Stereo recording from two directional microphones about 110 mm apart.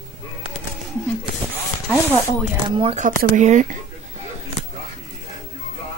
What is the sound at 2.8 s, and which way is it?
Speech, 80° right.